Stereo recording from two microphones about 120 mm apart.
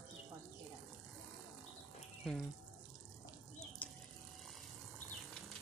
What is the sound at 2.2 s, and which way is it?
Speech, centre (ahead or behind).